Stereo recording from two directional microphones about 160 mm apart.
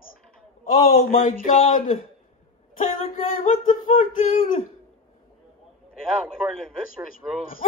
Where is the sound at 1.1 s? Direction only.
55° left (ahead or behind).